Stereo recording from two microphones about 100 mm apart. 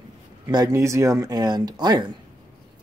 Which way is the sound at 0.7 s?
30° right (ahead or behind).